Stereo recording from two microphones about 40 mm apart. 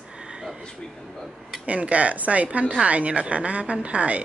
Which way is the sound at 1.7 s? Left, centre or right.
Right.